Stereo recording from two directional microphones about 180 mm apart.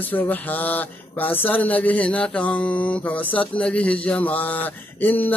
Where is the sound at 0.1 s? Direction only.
10° left (ahead or behind).